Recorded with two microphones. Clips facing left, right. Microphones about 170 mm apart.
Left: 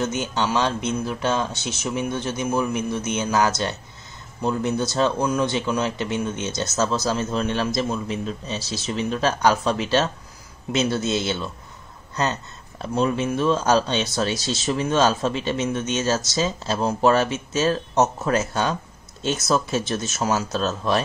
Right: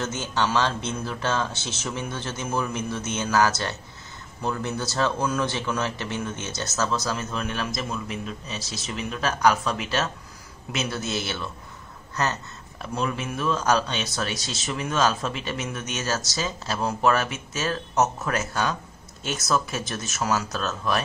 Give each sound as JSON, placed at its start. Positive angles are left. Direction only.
{"t": 0.0, "sound": "speech", "side_deg": 15}
{"t": 12.9, "sound": "speech", "side_deg": 25}